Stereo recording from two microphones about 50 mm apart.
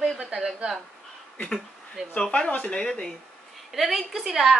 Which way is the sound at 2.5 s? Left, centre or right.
Left.